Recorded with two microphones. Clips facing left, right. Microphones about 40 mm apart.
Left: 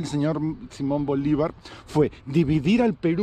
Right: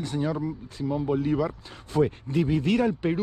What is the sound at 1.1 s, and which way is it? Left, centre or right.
Speech, left.